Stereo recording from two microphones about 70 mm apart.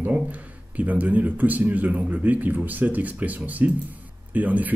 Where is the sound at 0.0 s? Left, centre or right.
Right.